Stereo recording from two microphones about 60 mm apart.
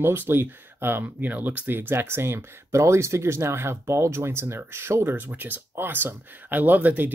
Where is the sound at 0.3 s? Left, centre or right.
Right.